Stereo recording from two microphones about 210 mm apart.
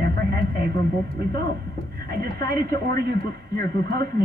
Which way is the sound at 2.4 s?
45° right (ahead or behind).